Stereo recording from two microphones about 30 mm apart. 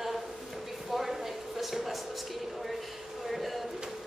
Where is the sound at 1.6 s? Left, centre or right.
Centre.